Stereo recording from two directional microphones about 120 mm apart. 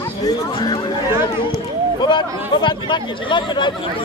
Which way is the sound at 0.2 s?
35° left (ahead or behind).